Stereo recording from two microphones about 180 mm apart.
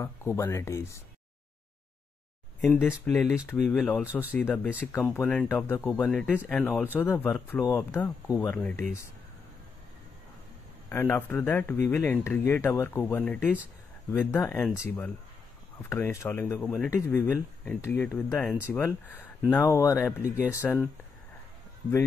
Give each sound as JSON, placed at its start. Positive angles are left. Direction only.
{"t": 0.0, "sound": "speech", "side_deg": 15}
{"t": 2.6, "sound": "speech", "side_deg": 10}
{"t": 10.9, "sound": "speech", "side_deg": 15}
{"t": 13.4, "sound": "speech", "side_deg": -5}
{"t": 14.1, "sound": "speech", "side_deg": 10}